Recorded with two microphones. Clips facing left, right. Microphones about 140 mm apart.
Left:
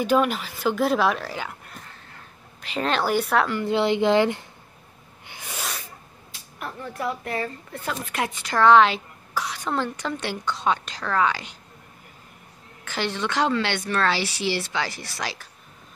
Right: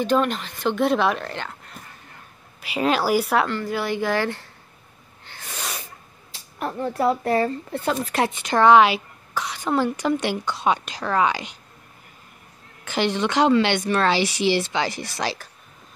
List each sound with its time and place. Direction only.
0.0 s a woman's voice: 10° left (ahead or behind)
2.6 s a woman's voice: 10° right (ahead or behind)
3.6 s speech: 25° left (ahead or behind)
5.2 s a sound: 15° left (ahead or behind)
6.6 s speech: 30° right (ahead or behind)
8.3 s a woman's voice: 20° right (ahead or behind)
9.3 s speech: centre (ahead or behind)
9.7 s a woman's voice: 10° right (ahead or behind)
12.8 s speech: 20° right (ahead or behind)